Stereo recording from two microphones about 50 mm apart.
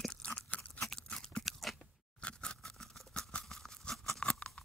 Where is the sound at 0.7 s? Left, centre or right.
Centre.